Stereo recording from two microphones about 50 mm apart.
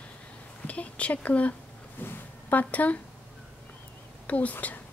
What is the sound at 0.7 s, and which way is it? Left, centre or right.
Speech, left.